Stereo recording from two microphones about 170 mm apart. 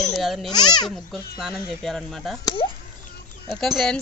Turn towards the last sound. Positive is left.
turn(degrees=0)  # may be behind; listen again after turning